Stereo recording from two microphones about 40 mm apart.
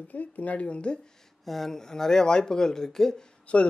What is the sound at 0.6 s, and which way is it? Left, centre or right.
Speech, left.